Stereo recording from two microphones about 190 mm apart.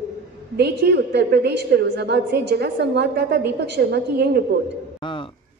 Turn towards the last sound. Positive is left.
turn(degrees=-60)  # may be behind; listen again after turning